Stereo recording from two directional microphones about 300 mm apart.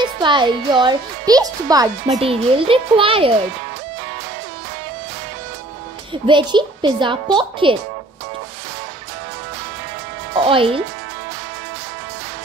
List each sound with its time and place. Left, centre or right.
0.0 s speech: centre
6.2 s speech: centre
10.3 s a woman's voice: centre